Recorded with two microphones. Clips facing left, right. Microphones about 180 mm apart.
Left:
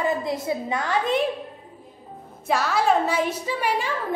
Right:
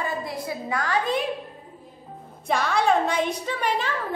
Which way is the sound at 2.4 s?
5° left (ahead or behind).